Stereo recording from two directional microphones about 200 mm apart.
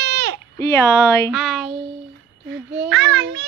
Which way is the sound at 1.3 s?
Centre (ahead or behind).